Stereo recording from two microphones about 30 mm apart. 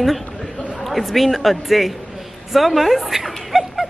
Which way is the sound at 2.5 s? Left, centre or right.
Centre.